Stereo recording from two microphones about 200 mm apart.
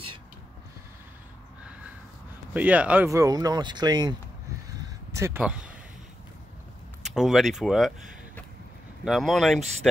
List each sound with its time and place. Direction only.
2.5 s speech: 5° right (ahead or behind)
4.8 s a sound: 15° right (ahead or behind)
7.2 s speech: centre (ahead or behind)
9.0 s speech: centre (ahead or behind)